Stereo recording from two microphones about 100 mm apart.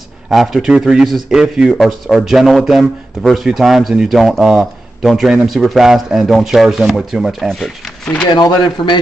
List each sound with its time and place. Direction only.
0.3 s a man's voice: centre (ahead or behind)
8.3 s speech: 45° left (ahead or behind)